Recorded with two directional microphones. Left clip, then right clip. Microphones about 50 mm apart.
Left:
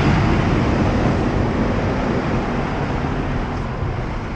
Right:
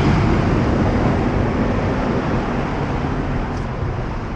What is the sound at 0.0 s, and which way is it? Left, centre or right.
Vehicle, left.